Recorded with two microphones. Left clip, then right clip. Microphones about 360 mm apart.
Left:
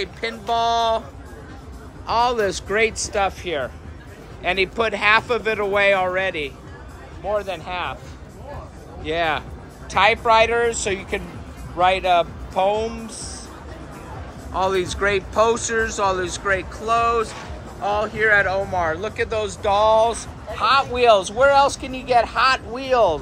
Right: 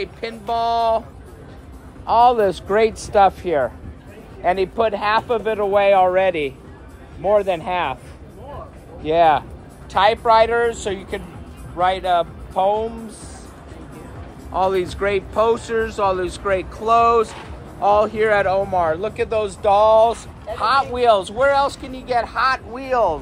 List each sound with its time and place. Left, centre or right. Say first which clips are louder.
0.0 s speech: left 1 dB; centre
2.0 s speech: right 5 dB; centre
9.0 s speech: right 7 dB; centre
14.5 s speech: right 2 dB; centre